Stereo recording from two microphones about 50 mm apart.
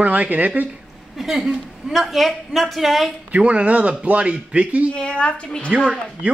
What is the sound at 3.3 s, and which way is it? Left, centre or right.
Speech, right.